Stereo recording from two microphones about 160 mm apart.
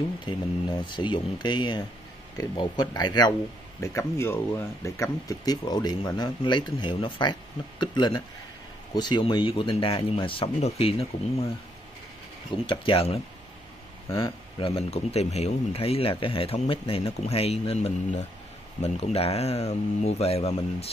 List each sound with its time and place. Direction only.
0.2 s speech: 30° left (ahead or behind)
12.6 s speech: 35° left (ahead or behind)